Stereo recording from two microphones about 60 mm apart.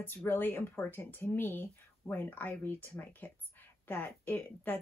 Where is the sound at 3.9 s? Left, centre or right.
Left.